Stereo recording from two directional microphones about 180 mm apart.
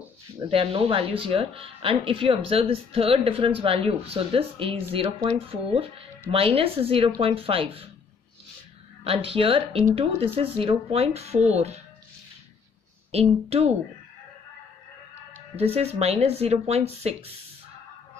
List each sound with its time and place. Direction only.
0.4 s speech: 30° right (ahead or behind)
9.0 s speech: 30° right (ahead or behind)
13.1 s speech: 35° right (ahead or behind)
15.5 s speech: 35° right (ahead or behind)